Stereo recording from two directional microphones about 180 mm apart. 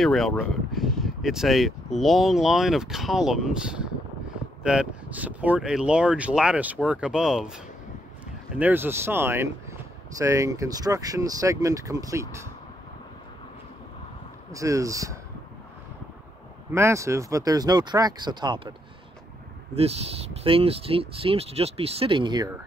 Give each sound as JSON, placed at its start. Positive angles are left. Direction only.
{"t": 0.0, "sound": "speech", "side_deg": 0}
{"t": 14.5, "sound": "speech", "side_deg": -20}
{"t": 16.7, "sound": "speech", "side_deg": -15}